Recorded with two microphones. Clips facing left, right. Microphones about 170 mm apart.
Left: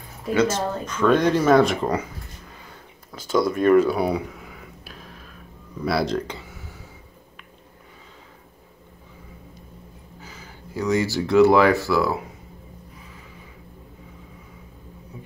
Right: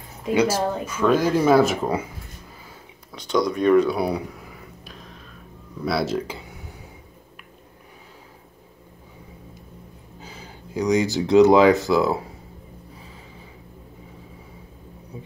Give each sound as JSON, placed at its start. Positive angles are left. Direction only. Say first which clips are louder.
{"t": 0.3, "sound": "speech", "louder": "right 1 dB", "side_deg": -10}
{"t": 3.1, "sound": "a sound", "louder": "left 1 dB", "side_deg": 5}
{"t": 5.8, "sound": "speech", "louder": "left 1 dB", "side_deg": 0}
{"t": 10.2, "sound": "speech", "louder": "right 2 dB", "side_deg": -15}
{"t": 15.1, "sound": "music", "louder": "right 3 dB", "side_deg": -25}